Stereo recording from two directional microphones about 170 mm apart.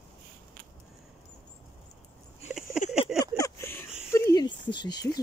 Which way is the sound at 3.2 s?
20° left (ahead or behind).